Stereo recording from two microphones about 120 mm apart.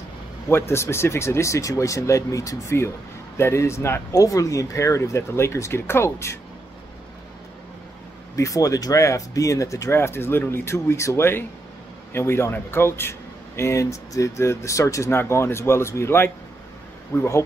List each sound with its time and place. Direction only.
0.5 s speech: 20° left (ahead or behind)
8.4 s speech: 30° left (ahead or behind)